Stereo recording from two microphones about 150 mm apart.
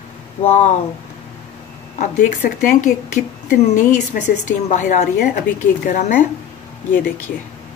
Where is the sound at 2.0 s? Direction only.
60° left (ahead or behind).